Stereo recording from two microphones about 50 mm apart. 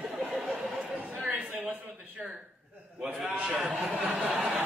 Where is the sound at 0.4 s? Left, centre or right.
Centre.